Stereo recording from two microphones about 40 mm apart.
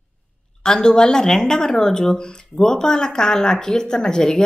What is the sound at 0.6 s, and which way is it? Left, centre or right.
A woman's voice, centre.